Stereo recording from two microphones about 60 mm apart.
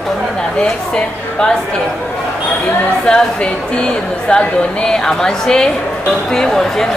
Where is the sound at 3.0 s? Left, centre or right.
Centre.